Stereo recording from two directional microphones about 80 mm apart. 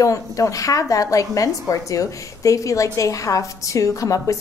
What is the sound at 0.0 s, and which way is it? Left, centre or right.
A woman's voice, left.